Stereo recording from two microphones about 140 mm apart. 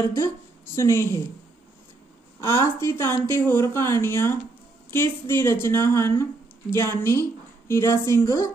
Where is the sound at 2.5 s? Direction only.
15° left (ahead or behind).